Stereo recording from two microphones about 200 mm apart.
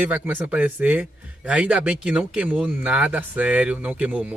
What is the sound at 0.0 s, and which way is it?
Speech, 10° right (ahead or behind).